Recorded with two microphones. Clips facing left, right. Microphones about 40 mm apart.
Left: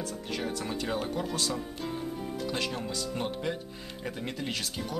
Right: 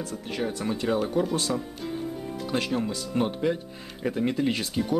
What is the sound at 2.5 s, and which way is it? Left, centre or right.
Speech, centre.